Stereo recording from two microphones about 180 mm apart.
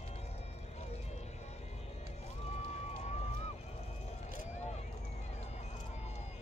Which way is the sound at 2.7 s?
40° left (ahead or behind).